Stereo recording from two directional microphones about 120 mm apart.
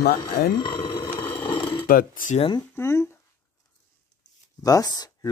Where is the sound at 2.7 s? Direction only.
20° left (ahead or behind).